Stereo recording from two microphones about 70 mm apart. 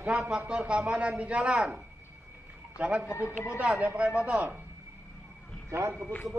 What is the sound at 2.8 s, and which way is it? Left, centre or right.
Speech, centre.